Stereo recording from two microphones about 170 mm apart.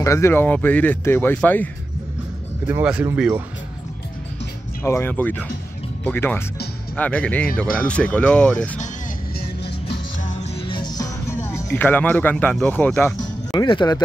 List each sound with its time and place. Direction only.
0.0 s speech: 15° left (ahead or behind)
2.6 s speech: 5° right (ahead or behind)
4.8 s speech: 15° left (ahead or behind)
9.4 s music: 80° left
10.6 s music: 25° left (ahead or behind); by 13.1 s 10° left (ahead or behind)
13.5 s speech: 25° left (ahead or behind)